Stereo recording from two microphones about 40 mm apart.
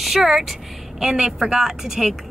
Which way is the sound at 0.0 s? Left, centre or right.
Centre.